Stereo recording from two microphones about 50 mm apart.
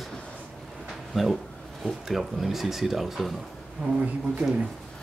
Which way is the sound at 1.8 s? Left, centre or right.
Centre.